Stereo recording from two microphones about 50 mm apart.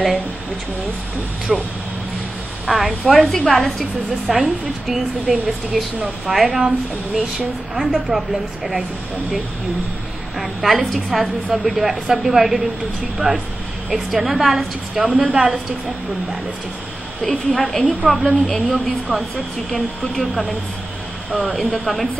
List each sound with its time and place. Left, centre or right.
1.5 s a woman's voice: centre
3.2 s a woman's voice: centre
8.1 s a woman's voice: centre
10.4 s a woman's voice: centre
13.8 s a woman's voice: centre
17.5 s a woman's voice: centre